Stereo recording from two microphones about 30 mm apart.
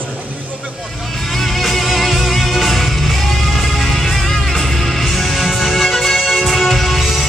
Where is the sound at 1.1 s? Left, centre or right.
Centre.